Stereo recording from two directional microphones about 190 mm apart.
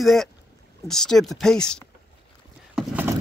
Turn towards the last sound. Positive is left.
turn(degrees=-10)  # may be behind; listen again after turning